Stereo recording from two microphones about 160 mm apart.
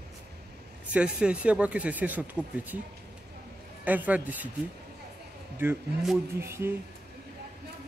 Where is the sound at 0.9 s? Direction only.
5° right (ahead or behind).